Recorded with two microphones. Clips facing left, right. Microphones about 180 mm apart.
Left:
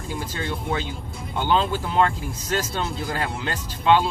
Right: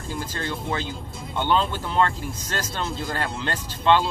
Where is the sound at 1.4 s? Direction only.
5° left (ahead or behind).